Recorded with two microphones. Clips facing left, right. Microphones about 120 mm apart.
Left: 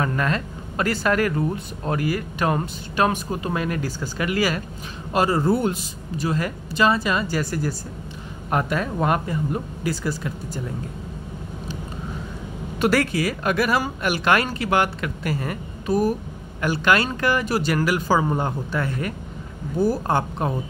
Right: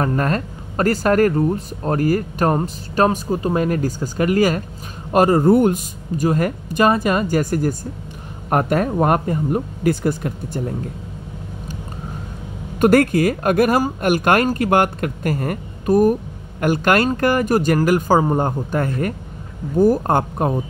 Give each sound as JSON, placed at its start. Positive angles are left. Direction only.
{"t": 0.0, "sound": "speech", "side_deg": -40}
{"t": 12.7, "sound": "speech", "side_deg": -50}